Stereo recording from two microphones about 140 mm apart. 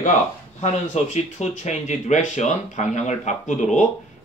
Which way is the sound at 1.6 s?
55° left (ahead or behind).